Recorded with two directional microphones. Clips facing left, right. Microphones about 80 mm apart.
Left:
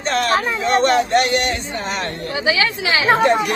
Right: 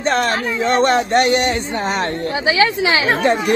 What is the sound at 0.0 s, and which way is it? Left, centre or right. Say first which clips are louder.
Speech: right 1 dB; right.